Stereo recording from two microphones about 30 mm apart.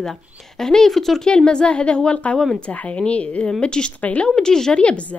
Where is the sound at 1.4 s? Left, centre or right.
Left.